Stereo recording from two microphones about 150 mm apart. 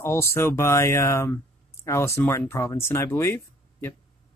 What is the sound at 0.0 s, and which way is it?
Speech, 15° left (ahead or behind).